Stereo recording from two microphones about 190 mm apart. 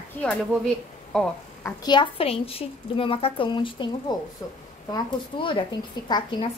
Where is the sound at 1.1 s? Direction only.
5° left (ahead or behind).